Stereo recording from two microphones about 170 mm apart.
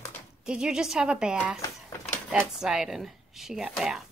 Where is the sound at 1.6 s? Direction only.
15° left (ahead or behind).